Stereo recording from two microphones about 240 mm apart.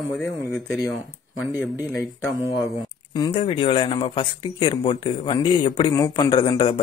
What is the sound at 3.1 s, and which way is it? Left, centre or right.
Speech, centre.